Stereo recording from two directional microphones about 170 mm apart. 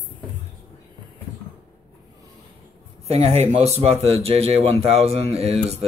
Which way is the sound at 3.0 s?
40° right (ahead or behind).